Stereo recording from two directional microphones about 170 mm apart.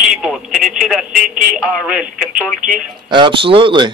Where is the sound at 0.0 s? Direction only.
Centre (ahead or behind).